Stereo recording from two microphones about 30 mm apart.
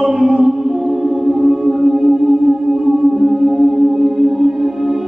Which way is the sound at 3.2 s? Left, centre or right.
Centre.